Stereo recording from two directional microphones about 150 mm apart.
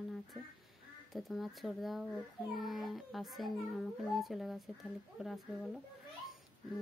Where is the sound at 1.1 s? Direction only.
Centre (ahead or behind).